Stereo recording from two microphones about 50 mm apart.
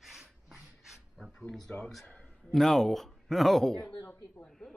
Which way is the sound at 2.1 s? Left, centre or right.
Left.